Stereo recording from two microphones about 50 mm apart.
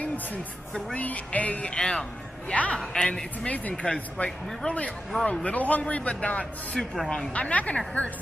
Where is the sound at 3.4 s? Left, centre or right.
Left.